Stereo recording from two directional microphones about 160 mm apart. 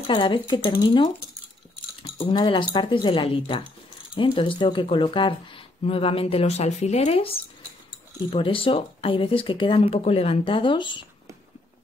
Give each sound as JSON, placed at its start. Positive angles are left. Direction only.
{"t": 0.0, "sound": "speech", "side_deg": 30}